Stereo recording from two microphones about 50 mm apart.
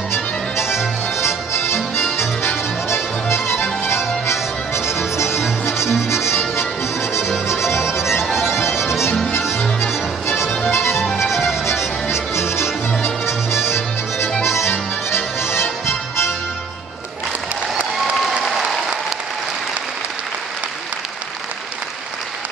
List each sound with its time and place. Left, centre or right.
0.1 s music: left
3.5 s music: left
4.3 s music: left
10.6 s music: left
18.4 s applause: centre